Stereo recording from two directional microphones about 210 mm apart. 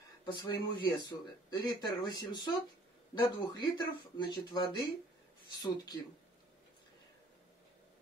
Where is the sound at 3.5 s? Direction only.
20° left (ahead or behind).